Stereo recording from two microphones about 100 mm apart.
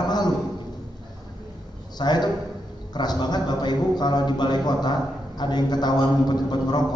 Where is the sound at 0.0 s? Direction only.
45° left (ahead or behind).